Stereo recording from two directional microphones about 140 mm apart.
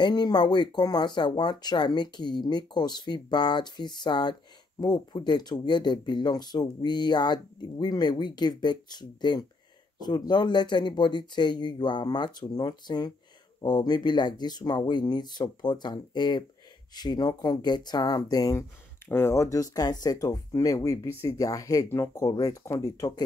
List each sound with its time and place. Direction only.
0.0 s speech: 30° left (ahead or behind)